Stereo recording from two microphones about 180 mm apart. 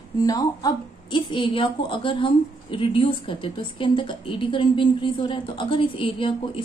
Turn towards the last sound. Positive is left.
turn(degrees=30)  # may be behind; listen again after turning